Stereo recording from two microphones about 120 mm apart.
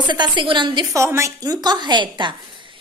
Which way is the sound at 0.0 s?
40° right (ahead or behind).